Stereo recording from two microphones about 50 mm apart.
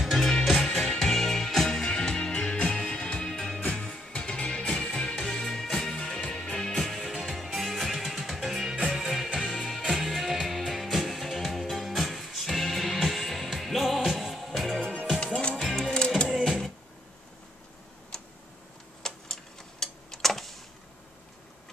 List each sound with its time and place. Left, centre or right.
0.0 s music: centre
4.7 s music: centre
5.9 s music: centre
7.0 s music: centre
15.6 s music: centre
18.1 s tick-tock: centre